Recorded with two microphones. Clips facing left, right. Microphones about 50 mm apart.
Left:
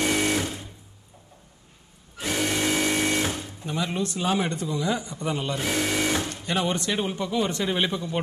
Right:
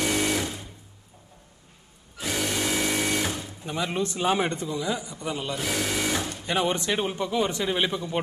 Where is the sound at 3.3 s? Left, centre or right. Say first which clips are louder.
Left 1 dB; centre.